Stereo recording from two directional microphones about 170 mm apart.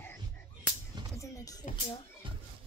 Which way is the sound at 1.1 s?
20° left (ahead or behind).